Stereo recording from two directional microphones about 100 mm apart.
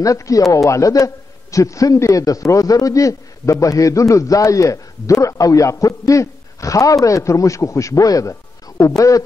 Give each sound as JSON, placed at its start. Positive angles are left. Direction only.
{"t": 0.0, "sound": "a man's voice", "side_deg": 35}